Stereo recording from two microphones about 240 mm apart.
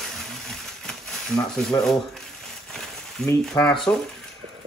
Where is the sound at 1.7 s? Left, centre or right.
Centre.